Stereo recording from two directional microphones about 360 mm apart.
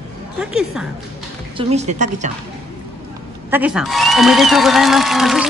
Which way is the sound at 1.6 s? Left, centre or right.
Centre.